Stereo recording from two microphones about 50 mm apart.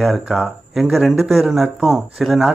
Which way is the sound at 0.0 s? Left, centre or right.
Centre.